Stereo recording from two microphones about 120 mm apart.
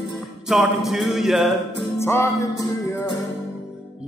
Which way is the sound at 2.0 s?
20° left (ahead or behind).